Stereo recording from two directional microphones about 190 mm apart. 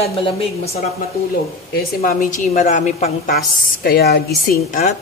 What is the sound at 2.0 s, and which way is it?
A woman's voice, 40° left (ahead or behind).